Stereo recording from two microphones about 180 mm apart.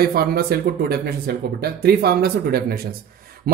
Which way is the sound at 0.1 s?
60° right (ahead or behind).